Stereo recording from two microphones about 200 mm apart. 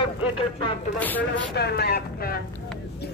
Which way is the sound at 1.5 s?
55° left (ahead or behind).